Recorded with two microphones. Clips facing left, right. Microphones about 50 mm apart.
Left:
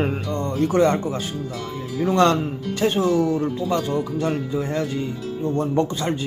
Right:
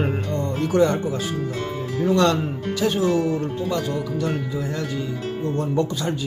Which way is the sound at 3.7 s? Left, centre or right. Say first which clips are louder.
Left 2 dB; left.